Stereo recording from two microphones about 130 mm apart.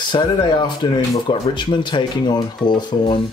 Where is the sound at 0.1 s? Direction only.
35° left (ahead or behind).